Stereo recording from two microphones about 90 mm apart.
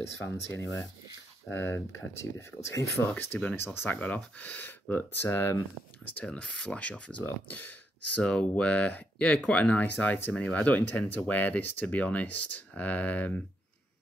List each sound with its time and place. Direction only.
0.0 s speech: 30° left (ahead or behind)
1.7 s speech: 30° left (ahead or behind)
3.9 s speech: 15° left (ahead or behind)
6.3 s speech: 10° left (ahead or behind)